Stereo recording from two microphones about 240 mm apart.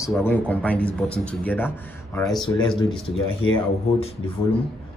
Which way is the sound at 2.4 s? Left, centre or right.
Centre.